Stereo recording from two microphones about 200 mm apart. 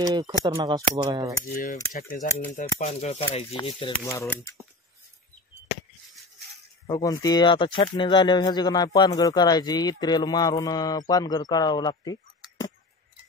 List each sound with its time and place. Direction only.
0.0 s speech: 20° right (ahead or behind)
1.5 s speech: 40° left (ahead or behind); by 4.1 s 25° left (ahead or behind)
4.1 s speech: 15° left (ahead or behind)
6.9 s speech: 20° left (ahead or behind)